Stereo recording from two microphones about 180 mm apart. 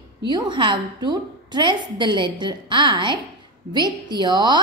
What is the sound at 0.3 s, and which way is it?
A woman's voice, 25° right (ahead or behind).